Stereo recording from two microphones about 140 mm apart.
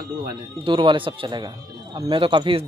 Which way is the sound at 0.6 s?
35° right (ahead or behind).